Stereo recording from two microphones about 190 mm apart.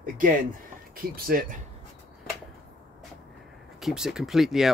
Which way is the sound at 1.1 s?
50° right (ahead or behind).